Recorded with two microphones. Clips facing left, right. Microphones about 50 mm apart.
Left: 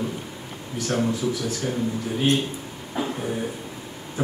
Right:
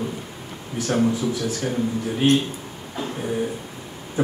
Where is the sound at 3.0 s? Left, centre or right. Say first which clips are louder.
Left 2 dB; centre.